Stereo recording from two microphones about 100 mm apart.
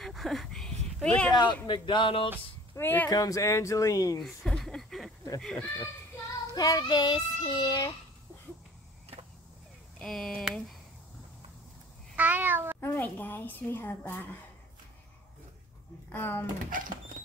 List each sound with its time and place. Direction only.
0.0 s a sound: centre (ahead or behind)
1.0 s speech: 10° left (ahead or behind)
1.3 s a man's voice: 45° left (ahead or behind)
2.8 s a woman's voice: 20° left (ahead or behind)
3.1 s child singing: 35° left (ahead or behind)
4.2 s a sound: 5° left (ahead or behind)
5.4 s speech: 5° left (ahead or behind)
6.5 s child singing: 40° left (ahead or behind)
9.9 s speech: 5° left (ahead or behind)
12.2 s speech: 15° right (ahead or behind)
12.8 s a woman's voice: 20° left (ahead or behind)
16.1 s a woman's voice: 20° left (ahead or behind)